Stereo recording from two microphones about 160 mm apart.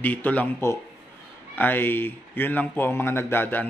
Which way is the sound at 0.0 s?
10° left (ahead or behind).